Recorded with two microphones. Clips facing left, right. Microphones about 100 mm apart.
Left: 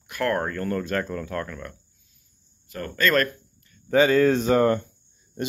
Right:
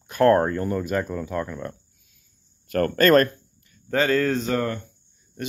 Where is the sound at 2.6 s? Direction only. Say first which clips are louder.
Right 6 dB; 55° right (ahead or behind).